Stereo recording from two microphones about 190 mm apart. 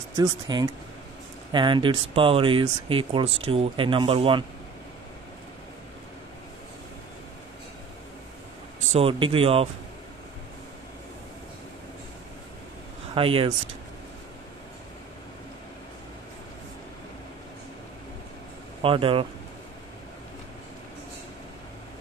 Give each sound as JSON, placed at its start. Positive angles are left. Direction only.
{"t": 0.2, "sound": "speech", "side_deg": -20}
{"t": 8.9, "sound": "speech", "side_deg": -30}
{"t": 13.1, "sound": "speech", "side_deg": -30}
{"t": 18.8, "sound": "speech", "side_deg": -30}